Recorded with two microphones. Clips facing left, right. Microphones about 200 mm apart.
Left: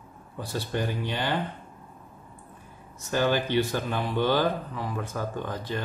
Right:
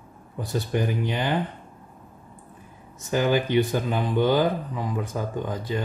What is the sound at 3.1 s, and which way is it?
Speech, 15° right (ahead or behind).